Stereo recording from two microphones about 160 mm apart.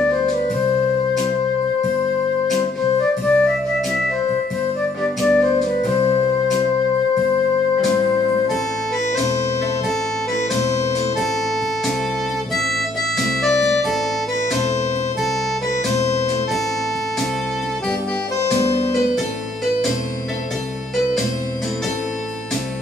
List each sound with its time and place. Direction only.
3.3 s music: 5° left (ahead or behind)
5.0 s music: 5° left (ahead or behind)
13.4 s music: centre (ahead or behind)